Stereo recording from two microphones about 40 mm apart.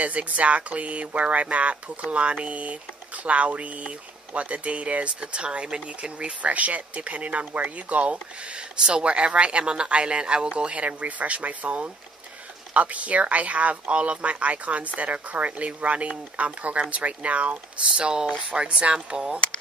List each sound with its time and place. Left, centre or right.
0.0 s speech: right